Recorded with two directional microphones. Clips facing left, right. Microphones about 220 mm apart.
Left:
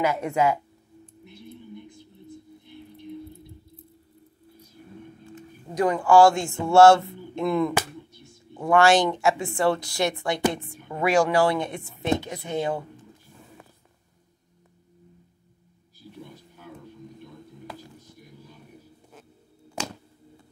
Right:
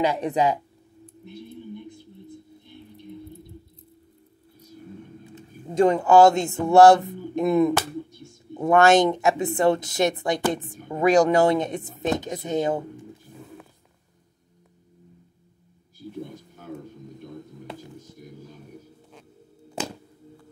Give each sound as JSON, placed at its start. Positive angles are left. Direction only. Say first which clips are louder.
{"t": 0.0, "sound": "speech", "louder": "right 1 dB", "side_deg": -15}
{"t": 5.8, "sound": "a woman's voice", "louder": "right 2 dB", "side_deg": -25}